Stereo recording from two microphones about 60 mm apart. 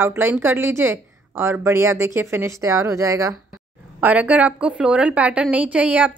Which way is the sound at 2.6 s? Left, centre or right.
Right.